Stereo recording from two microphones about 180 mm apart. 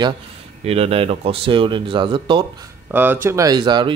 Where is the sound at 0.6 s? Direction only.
35° right (ahead or behind).